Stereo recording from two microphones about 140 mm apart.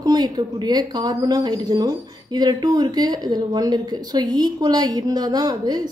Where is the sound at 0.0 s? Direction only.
30° right (ahead or behind).